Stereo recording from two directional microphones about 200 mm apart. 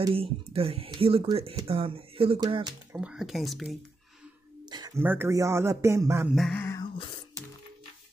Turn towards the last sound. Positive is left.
turn(degrees=25)  # may be behind; listen again after turning